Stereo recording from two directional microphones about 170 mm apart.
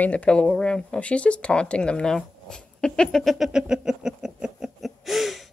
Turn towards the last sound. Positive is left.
turn(degrees=0)  # may be behind; listen again after turning